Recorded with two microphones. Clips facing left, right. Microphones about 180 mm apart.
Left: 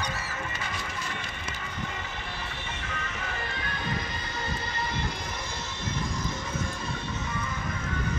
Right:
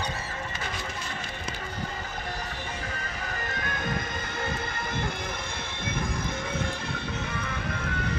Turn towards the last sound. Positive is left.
turn(degrees=-65)  # may be behind; listen again after turning